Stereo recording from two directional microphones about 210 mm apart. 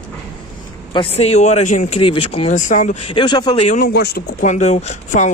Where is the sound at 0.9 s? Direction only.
25° left (ahead or behind).